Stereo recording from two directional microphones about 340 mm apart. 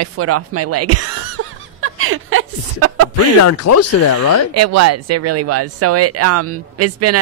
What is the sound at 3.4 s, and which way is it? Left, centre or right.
Speech, left.